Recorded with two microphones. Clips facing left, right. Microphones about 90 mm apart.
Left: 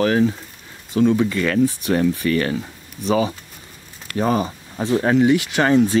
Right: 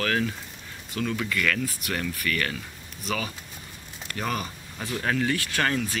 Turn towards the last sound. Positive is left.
turn(degrees=25)  # may be behind; listen again after turning